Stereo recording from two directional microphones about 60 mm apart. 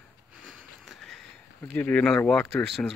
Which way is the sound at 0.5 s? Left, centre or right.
Centre.